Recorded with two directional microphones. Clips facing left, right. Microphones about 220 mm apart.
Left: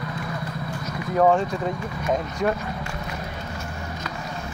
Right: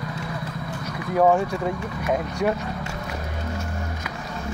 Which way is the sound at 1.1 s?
10° right (ahead or behind).